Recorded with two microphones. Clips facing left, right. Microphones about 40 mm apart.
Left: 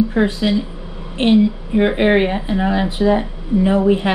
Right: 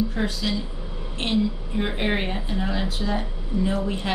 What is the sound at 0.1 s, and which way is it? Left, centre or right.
Speech, left.